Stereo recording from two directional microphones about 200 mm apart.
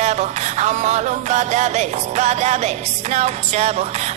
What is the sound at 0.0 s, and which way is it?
Music, 35° right (ahead or behind).